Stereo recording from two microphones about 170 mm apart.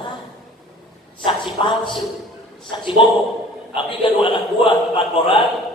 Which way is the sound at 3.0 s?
30° left (ahead or behind).